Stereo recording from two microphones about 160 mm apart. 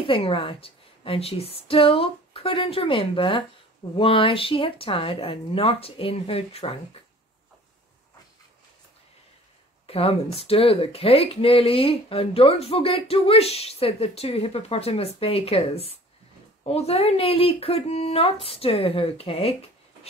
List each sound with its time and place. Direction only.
0.0 s speech: 35° left (ahead or behind)
9.8 s speech: 35° left (ahead or behind)